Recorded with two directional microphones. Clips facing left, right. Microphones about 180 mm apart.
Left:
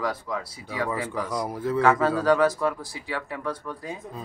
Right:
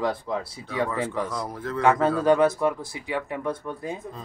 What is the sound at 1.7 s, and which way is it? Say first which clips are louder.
Speech: right 1 dB; 20° right (ahead or behind).